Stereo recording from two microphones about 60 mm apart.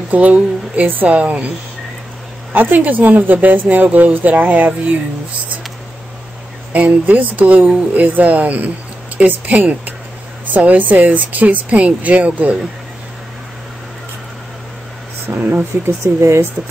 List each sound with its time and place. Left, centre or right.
0.1 s a woman's voice: right
2.5 s a woman's voice: right
6.7 s a woman's voice: right
15.2 s speech: right
16.0 s speech: right